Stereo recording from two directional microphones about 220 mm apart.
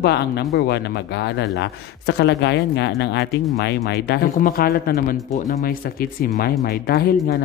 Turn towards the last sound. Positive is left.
turn(degrees=45)  # may be behind; listen again after turning